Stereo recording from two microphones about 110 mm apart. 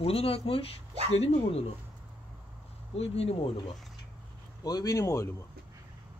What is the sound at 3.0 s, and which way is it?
Speech, 65° left (ahead or behind).